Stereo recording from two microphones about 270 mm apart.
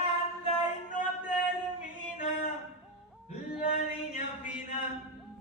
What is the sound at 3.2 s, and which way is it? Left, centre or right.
Yodeling, left.